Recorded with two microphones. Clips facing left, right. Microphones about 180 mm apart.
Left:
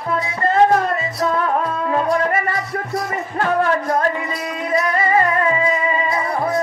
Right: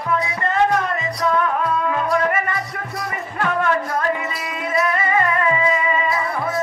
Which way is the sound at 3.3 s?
35° left (ahead or behind).